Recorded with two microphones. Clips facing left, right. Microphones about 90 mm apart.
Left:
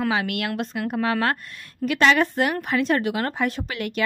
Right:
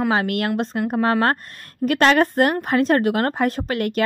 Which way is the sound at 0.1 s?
40° right (ahead or behind).